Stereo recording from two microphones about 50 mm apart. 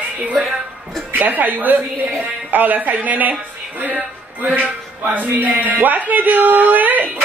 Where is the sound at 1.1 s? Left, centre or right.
Right.